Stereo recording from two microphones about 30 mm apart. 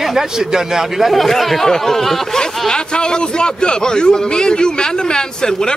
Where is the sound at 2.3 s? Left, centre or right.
Left.